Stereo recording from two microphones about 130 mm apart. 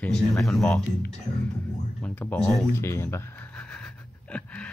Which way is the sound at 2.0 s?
10° left (ahead or behind).